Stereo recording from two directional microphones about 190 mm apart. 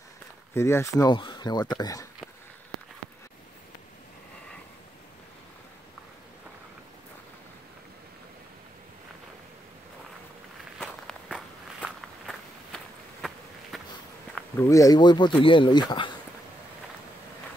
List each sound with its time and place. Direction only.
0.6 s speech: 15° left (ahead or behind)
10.8 s walk: centre (ahead or behind)
14.6 s speech: 15° left (ahead or behind)